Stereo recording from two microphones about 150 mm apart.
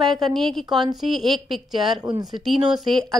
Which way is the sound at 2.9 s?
30° right (ahead or behind).